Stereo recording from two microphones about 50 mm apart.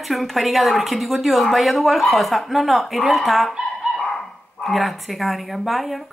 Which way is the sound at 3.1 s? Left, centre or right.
Centre.